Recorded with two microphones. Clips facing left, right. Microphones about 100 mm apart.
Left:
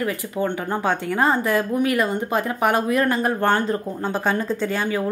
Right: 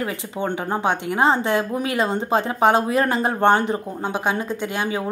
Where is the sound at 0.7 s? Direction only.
20° right (ahead or behind).